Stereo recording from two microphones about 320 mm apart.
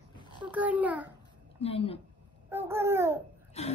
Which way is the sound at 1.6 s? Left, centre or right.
Centre.